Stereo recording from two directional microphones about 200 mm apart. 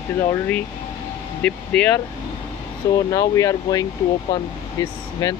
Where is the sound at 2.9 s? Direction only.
15° left (ahead or behind).